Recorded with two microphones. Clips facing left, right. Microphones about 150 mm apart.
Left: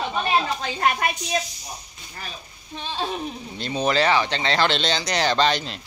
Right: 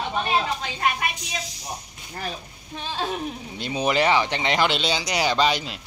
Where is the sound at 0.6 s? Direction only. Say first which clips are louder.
Left 3 dB; 45° left (ahead or behind).